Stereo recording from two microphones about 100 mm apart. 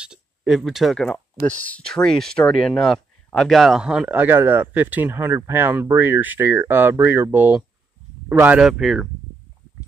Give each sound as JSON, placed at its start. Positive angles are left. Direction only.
{"t": 0.0, "sound": "speech", "side_deg": -5}
{"t": 1.6, "sound": "speech", "side_deg": 10}
{"t": 4.1, "sound": "speech", "side_deg": -20}
{"t": 8.6, "sound": "speech", "side_deg": -5}